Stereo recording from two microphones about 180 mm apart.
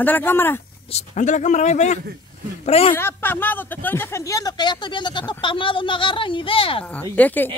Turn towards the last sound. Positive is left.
turn(degrees=10)  # may be behind; listen again after turning